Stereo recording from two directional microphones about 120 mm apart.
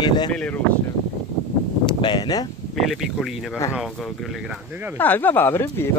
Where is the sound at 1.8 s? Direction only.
40° left (ahead or behind).